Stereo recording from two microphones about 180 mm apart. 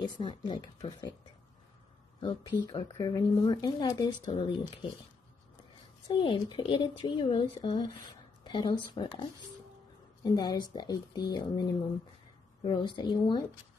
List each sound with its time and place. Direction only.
0.5 s speech: 25° left (ahead or behind)
2.1 s speech: 25° left (ahead or behind)
6.0 s speech: 25° left (ahead or behind)
10.2 s speech: 20° left (ahead or behind)